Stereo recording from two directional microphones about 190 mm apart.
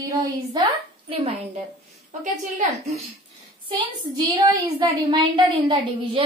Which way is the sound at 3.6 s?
25° right (ahead or behind).